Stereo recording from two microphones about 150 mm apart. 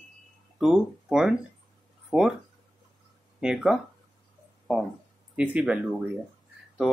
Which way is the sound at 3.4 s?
5° right (ahead or behind).